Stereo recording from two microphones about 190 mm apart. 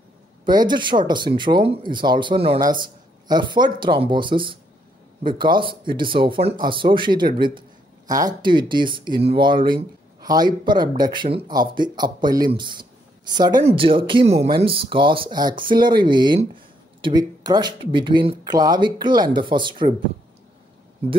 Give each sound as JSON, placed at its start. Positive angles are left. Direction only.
{"t": 0.5, "sound": "speech", "side_deg": -25}